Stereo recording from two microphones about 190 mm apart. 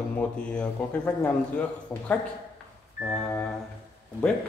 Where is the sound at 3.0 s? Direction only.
Centre (ahead or behind).